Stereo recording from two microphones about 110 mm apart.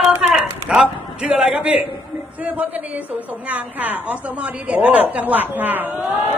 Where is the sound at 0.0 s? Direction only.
Centre (ahead or behind).